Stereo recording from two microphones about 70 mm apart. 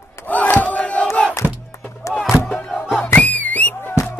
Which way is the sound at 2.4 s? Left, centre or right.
Centre.